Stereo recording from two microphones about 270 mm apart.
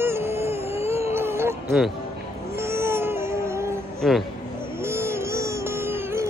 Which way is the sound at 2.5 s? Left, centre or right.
Centre.